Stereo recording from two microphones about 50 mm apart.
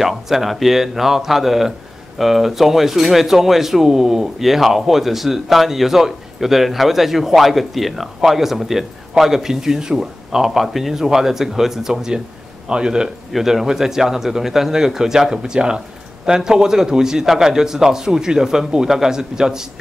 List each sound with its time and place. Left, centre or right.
0.0 s a man's voice: centre
13.3 s a man's voice: centre